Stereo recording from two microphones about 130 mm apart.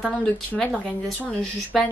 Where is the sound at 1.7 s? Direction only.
Centre (ahead or behind).